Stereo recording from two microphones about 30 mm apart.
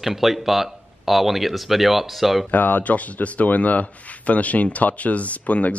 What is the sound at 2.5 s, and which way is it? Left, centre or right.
Speech, left.